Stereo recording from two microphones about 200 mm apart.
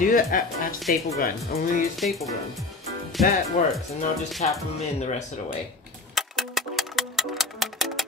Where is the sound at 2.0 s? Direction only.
Centre (ahead or behind).